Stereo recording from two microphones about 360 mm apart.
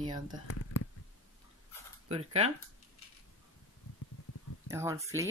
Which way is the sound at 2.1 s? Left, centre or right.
Centre.